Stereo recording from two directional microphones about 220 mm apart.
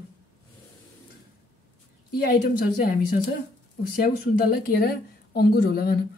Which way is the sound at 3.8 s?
45° left (ahead or behind).